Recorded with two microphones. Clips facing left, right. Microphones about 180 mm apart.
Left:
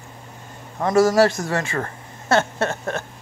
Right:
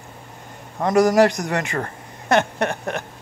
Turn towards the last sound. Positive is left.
turn(degrees=-15)  # may be behind; listen again after turning